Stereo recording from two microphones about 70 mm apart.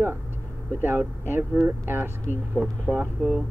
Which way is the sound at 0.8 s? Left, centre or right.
Right.